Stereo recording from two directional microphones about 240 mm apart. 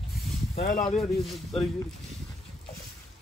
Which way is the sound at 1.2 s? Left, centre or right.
Centre.